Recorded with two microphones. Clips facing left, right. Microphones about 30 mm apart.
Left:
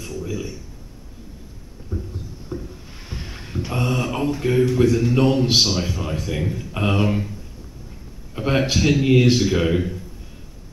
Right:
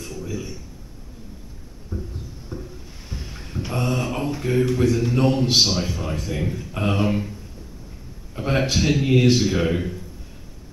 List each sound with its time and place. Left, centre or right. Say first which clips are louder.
0.0 s a man's voice: left 2 dB; centre
1.9 s a sound: left 2 dB; centre
3.1 s boat: left 3 dB; left
3.6 s a man's voice: left 1 dB; centre
8.4 s a man's voice: left 2 dB; centre